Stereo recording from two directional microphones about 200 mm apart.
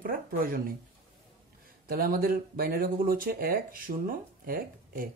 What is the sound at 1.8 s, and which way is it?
Speech, 50° right (ahead or behind).